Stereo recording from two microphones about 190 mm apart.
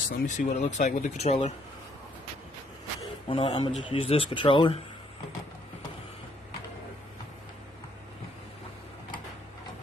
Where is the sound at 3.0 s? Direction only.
30° left (ahead or behind).